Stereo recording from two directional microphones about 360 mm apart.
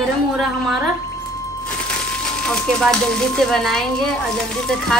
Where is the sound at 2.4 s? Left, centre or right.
Centre.